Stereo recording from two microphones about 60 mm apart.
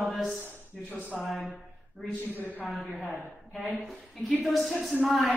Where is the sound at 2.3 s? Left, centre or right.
Left.